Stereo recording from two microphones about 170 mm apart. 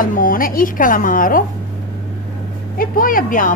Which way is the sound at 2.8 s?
55° left (ahead or behind).